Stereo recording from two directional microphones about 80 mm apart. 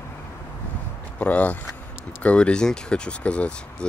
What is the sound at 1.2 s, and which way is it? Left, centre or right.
Speech, centre.